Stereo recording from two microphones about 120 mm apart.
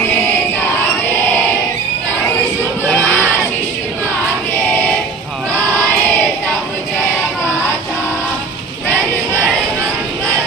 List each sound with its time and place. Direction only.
2.9 s crowd: 15° left (ahead or behind)